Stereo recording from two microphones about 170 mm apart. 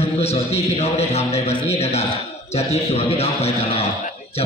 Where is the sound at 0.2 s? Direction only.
40° left (ahead or behind).